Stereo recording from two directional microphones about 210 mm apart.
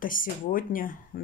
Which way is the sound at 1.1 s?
45° left (ahead or behind).